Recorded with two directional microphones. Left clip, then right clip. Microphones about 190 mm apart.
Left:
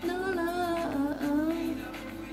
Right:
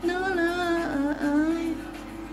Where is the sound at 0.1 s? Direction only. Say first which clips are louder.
Right 5 dB; 30° left (ahead or behind).